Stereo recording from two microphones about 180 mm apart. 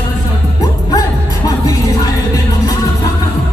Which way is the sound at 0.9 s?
20° left (ahead or behind).